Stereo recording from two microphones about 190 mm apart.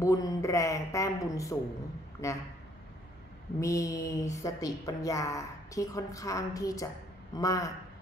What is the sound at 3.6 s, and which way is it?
A woman's voice, 15° left (ahead or behind).